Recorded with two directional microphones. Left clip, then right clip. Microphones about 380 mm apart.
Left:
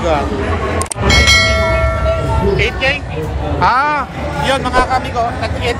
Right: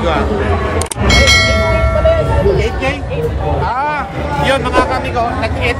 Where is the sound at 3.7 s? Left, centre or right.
Left.